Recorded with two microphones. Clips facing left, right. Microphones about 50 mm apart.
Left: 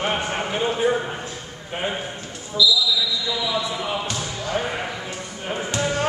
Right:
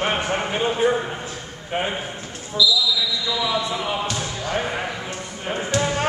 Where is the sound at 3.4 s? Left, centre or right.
Centre.